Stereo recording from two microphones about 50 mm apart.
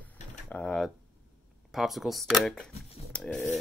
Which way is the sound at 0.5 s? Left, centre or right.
Left.